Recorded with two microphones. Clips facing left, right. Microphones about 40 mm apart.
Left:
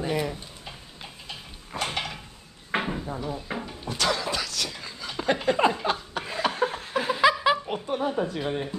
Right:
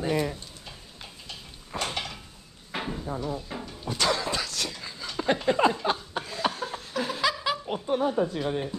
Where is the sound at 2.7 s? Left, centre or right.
Left.